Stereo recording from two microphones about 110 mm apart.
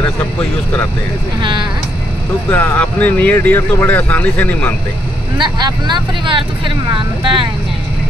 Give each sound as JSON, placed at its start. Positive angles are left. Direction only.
{"t": 1.4, "sound": "speech", "side_deg": -45}
{"t": 2.5, "sound": "speech", "side_deg": 20}
{"t": 5.4, "sound": "speech", "side_deg": -45}